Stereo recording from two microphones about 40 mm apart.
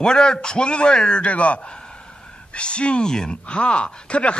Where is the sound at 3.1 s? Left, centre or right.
Centre.